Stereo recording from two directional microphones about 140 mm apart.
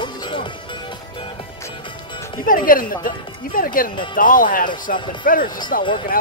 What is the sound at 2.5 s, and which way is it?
Speech, 80° left.